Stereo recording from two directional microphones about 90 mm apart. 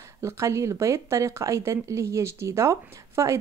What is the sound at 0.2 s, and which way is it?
Speech, 35° right (ahead or behind).